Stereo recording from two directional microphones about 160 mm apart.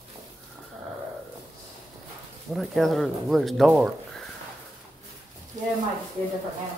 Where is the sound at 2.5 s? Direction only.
Centre (ahead or behind).